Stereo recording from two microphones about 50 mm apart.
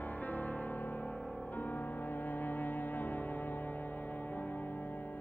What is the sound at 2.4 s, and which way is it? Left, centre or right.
Music, left.